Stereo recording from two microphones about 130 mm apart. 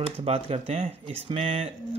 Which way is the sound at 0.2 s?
50° right (ahead or behind).